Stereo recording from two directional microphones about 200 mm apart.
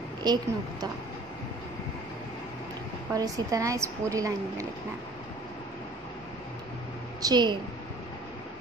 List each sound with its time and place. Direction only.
0.2 s a woman's voice: 20° right (ahead or behind)
3.1 s speech: 15° right (ahead or behind)
7.2 s a woman's voice: 20° right (ahead or behind)